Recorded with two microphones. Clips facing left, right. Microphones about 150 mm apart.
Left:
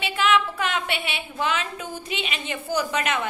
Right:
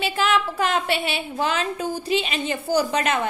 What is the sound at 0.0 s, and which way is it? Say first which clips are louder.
A woman's voice: even; 35° right (ahead or behind).